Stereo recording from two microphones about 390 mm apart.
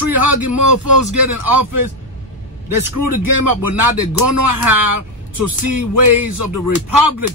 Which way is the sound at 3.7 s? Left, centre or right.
Right.